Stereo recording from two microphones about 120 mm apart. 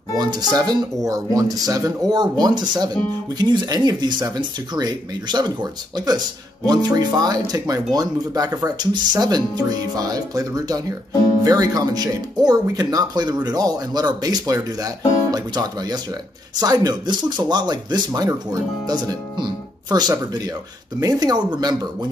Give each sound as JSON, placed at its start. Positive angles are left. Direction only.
{"t": 0.2, "sound": "speech", "side_deg": -35}